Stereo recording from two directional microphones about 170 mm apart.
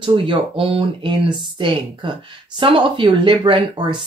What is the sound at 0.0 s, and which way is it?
Speech, 30° right (ahead or behind).